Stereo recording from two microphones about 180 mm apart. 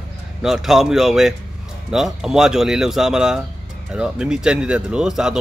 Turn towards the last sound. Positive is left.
turn(degrees=-5)  # may be behind; listen again after turning